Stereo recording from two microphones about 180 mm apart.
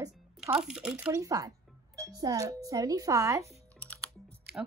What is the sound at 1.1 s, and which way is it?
Speech, 20° right (ahead or behind).